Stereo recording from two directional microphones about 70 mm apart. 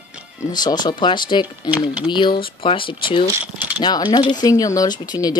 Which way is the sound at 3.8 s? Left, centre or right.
Left.